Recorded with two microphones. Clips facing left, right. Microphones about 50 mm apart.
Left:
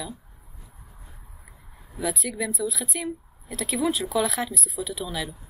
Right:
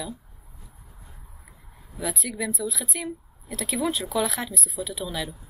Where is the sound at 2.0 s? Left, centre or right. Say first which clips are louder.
Left 2 dB; centre.